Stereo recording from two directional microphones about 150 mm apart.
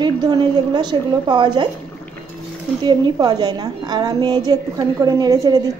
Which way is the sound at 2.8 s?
30° right (ahead or behind).